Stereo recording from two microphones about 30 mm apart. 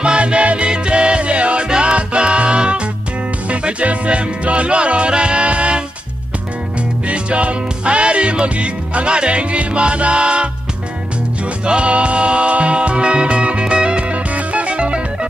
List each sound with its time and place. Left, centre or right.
0.0 s music: right
3.4 s music: right
7.1 s music: right
11.6 s music: right